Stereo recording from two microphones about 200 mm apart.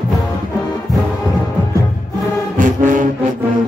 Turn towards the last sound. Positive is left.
turn(degrees=-40)  # may be behind; listen again after turning